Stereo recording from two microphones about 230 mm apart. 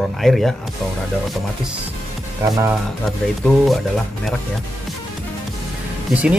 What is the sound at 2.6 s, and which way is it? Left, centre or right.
Speech, centre.